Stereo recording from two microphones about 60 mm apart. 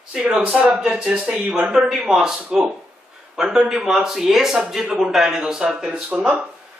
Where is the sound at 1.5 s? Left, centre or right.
Centre.